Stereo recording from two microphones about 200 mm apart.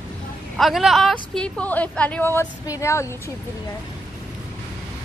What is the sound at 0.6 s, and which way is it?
A woman's voice, centre (ahead or behind).